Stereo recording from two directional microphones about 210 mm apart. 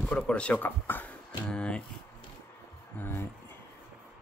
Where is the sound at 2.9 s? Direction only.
10° left (ahead or behind).